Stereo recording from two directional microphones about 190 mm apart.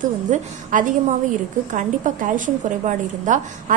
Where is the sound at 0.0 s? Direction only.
45° right (ahead or behind).